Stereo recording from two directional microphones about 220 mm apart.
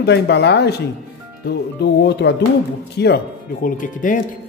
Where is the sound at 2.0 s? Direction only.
50° left (ahead or behind).